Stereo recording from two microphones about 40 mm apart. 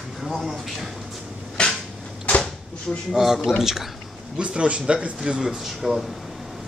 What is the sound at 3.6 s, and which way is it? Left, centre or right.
Speech, centre.